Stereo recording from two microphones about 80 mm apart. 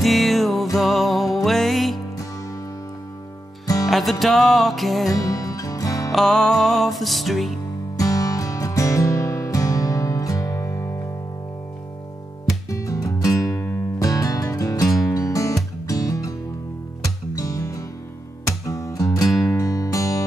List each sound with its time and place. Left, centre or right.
0.0 s music: centre
3.6 s music: left
3.9 s music: centre
5.1 s music: left
6.1 s music: centre
8.0 s music: left
12.6 s music: left